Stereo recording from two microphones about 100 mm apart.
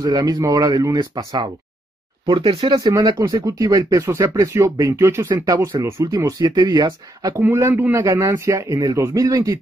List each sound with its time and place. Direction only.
0.0 s speech: 40° right (ahead or behind)
0.9 s speech: 50° right (ahead or behind)
2.3 s speech: 75° right (ahead or behind)
2.8 s speech: 40° right (ahead or behind)
3.4 s speech: 35° right (ahead or behind)
4.2 s speech: 45° right (ahead or behind)
4.6 s speech: 30° right (ahead or behind)
5.3 s speech: 40° right (ahead or behind)
7.3 s a man's voice: 25° right (ahead or behind)
8.0 s speech: 30° right (ahead or behind)